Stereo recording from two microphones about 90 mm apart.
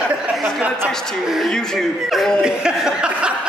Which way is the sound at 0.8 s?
5° left (ahead or behind).